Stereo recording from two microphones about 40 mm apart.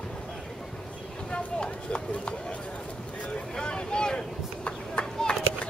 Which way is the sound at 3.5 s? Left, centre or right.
Left.